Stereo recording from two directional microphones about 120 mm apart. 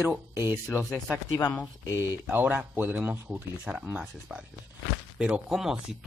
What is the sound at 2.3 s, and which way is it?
Speech, 15° right (ahead or behind).